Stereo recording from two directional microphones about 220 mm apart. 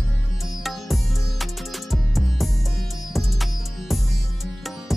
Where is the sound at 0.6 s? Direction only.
Centre (ahead or behind).